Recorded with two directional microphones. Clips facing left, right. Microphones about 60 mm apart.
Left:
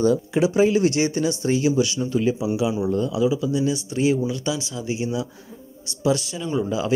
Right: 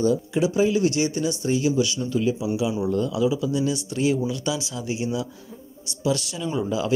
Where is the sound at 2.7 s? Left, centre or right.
Centre.